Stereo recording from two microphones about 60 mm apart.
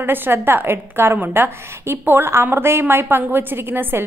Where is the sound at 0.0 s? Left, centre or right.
Right.